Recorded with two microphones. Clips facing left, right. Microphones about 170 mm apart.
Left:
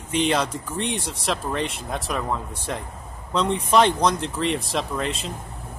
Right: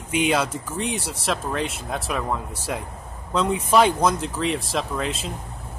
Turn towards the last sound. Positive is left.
turn(degrees=0)  # may be behind; listen again after turning